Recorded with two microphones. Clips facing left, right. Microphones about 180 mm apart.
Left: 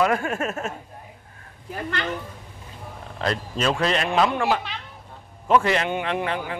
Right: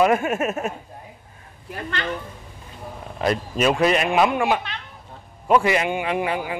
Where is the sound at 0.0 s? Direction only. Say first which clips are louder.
Right 3 dB; 20° right (ahead or behind).